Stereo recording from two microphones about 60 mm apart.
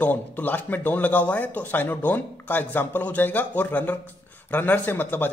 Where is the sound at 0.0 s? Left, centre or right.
Left.